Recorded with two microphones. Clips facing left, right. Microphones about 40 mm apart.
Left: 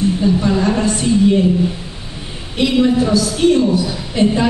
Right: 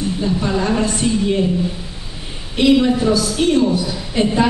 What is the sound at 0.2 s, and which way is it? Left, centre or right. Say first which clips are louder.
Speech: left 4 dB; centre.